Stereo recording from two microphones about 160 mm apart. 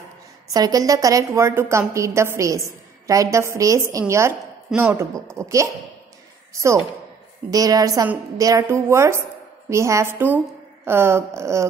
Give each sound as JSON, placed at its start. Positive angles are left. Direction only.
{"t": 0.5, "sound": "a woman's voice", "side_deg": -25}